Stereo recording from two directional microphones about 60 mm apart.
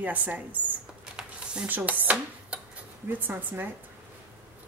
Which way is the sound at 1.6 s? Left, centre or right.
Right.